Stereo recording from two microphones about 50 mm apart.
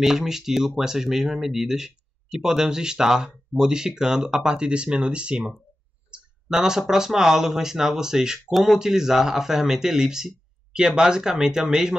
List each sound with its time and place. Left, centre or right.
0.0 s speech: centre
6.5 s speech: centre